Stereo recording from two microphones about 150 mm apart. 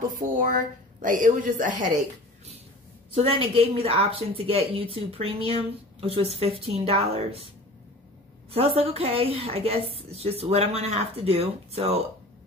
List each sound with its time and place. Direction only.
0.2 s a woman's voice: 60° right (ahead or behind)
3.2 s a woman's voice: 40° right (ahead or behind)
8.5 s a woman's voice: 40° right (ahead or behind)